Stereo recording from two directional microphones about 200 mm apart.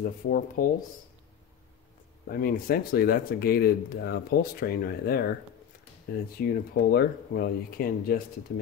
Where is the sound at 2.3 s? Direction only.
45° left (ahead or behind).